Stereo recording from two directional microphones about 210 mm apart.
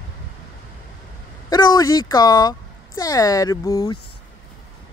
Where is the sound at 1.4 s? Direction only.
20° left (ahead or behind).